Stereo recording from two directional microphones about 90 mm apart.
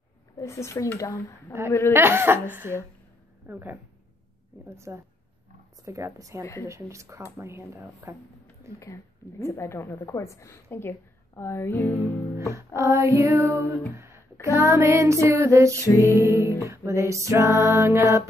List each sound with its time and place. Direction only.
0.4 s a woman's voice: 35° left (ahead or behind)
2.0 s female singing: 25° right (ahead or behind)
3.4 s speech: 25° right (ahead or behind)
4.6 s a sound: 30° right (ahead or behind)
7.3 s female singing: 30° right (ahead or behind)
8.7 s a woman's voice: 35° left (ahead or behind)
12.5 s female singing: 30° right (ahead or behind)
14.4 s a sound: 30° right (ahead or behind)
15.9 s music: 25° left (ahead or behind)
16.2 s female singing: 30° right (ahead or behind)
16.6 s a sound: 30° right (ahead or behind)